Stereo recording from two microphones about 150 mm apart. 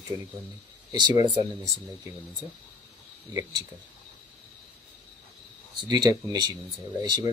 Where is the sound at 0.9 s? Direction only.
30° right (ahead or behind).